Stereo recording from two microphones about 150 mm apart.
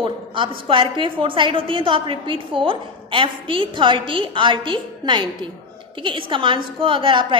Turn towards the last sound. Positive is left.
turn(degrees=-35)  # may be behind; listen again after turning